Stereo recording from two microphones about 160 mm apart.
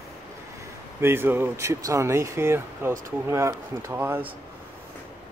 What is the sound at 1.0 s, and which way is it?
Speech, 15° right (ahead or behind).